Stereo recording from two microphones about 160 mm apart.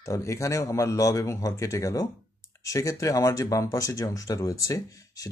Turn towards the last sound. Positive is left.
turn(degrees=20)  # may be behind; listen again after turning